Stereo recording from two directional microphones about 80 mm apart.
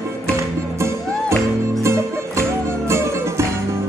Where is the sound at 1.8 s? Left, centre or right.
Right.